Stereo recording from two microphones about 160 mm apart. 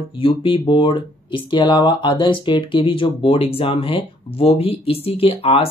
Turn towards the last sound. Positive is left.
turn(degrees=35)  # may be behind; listen again after turning